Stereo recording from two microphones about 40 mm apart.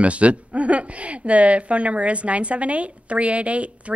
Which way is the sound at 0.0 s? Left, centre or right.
Right.